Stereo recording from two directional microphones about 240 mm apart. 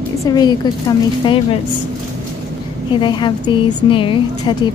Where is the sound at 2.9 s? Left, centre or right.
Centre.